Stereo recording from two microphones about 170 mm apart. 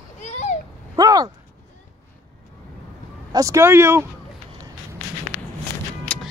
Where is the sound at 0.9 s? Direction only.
20° right (ahead or behind).